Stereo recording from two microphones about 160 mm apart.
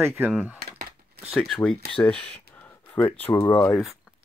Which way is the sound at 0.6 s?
75° right (ahead or behind).